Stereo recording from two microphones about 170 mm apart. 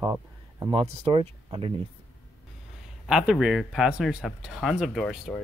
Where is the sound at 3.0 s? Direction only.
5° right (ahead or behind).